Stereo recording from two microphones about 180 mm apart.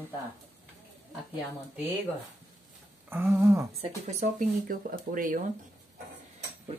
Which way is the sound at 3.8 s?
40° right (ahead or behind).